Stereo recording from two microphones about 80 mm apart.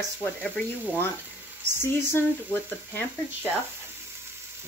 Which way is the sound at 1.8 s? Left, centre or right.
Left.